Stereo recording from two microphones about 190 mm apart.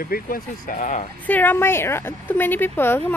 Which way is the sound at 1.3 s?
10° left (ahead or behind).